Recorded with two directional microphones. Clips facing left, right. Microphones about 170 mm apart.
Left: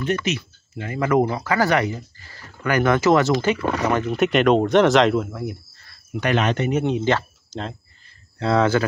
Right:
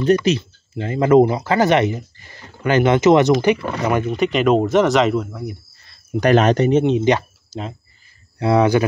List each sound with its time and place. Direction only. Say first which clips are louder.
0.0 s speech: right 8 dB; 35° right (ahead or behind); by 3.5 s 15° right (ahead or behind)
4.1 s speech: even; centre (ahead or behind)
6.2 s speech: right 7 dB; 40° right (ahead or behind); by 8.8 s 15° right (ahead or behind)